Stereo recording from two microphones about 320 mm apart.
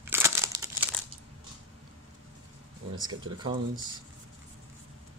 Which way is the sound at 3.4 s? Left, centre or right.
Centre.